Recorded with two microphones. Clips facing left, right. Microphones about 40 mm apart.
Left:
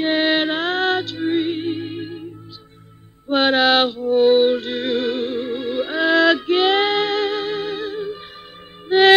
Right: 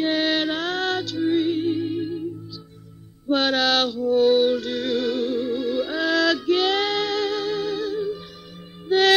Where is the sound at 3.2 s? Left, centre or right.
Left.